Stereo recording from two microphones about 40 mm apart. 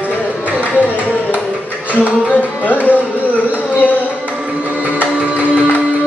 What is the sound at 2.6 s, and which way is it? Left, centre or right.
Music, left.